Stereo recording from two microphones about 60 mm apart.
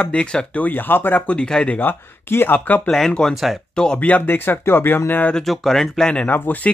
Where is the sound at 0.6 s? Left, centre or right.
Left.